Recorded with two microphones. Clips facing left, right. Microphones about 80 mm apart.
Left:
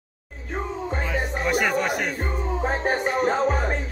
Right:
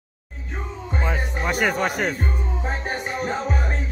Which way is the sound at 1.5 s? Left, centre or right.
Right.